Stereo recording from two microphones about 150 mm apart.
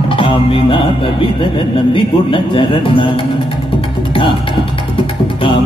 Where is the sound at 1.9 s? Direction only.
35° left (ahead or behind).